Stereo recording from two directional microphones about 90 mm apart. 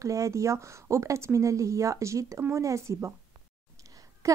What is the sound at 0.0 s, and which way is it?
A woman's voice, 35° right (ahead or behind).